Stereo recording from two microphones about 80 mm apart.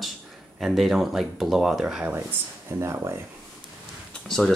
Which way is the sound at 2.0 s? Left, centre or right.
Right.